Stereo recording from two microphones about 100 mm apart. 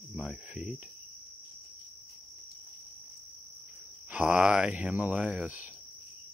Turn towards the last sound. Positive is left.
turn(degrees=-15)  # may be behind; listen again after turning